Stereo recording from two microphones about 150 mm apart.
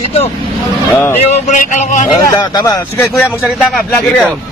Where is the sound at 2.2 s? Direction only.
25° left (ahead or behind).